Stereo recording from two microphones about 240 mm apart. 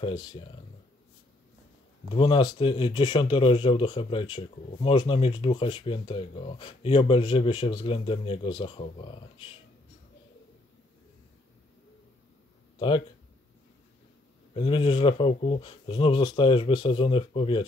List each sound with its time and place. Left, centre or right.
0.0 s speech: centre
2.1 s speech: left
12.7 s speech: left
14.5 s speech: left